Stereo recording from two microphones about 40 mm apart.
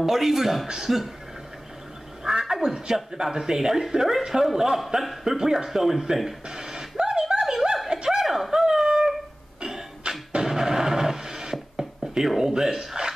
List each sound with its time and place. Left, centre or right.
0.0 s speech: centre
2.2 s speech: centre
6.5 s snicker: centre
9.6 s a sound: centre
11.5 s a sound: centre
12.2 s speech: centre